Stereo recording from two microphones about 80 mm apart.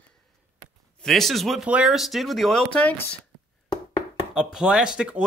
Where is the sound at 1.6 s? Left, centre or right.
Centre.